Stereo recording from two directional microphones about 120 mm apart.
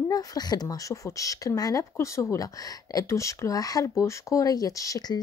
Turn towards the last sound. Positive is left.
turn(degrees=30)  # may be behind; listen again after turning